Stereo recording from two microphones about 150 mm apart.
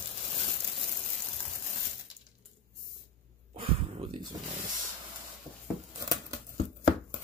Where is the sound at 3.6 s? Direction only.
35° right (ahead or behind).